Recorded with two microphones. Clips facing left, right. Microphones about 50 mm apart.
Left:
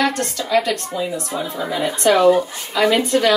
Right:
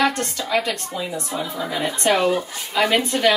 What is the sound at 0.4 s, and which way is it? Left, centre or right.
Speech, centre.